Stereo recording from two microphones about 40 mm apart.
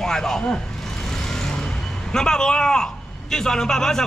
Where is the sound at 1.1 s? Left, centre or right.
Centre.